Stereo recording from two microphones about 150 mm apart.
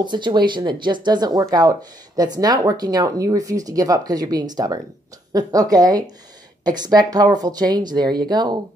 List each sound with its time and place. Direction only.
0.0 s speech: 30° right (ahead or behind)